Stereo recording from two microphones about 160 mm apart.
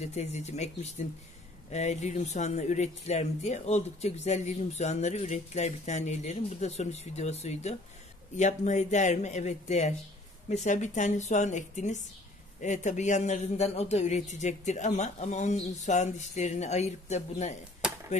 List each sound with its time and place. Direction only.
0.0 s speech: 45° left (ahead or behind)